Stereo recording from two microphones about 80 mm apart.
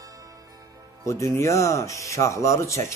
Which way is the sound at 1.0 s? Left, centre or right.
Left.